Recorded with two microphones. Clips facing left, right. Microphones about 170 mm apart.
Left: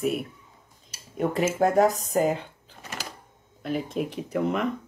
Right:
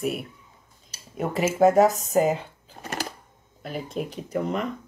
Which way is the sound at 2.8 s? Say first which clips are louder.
Right 6 dB; 50° right (ahead or behind).